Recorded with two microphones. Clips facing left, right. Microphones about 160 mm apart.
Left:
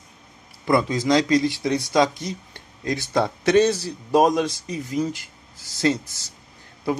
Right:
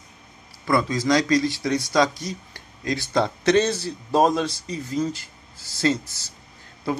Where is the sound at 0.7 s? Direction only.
20° left (ahead or behind).